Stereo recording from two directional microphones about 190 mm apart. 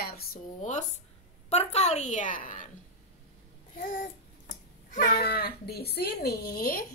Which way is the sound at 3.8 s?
45° left (ahead or behind).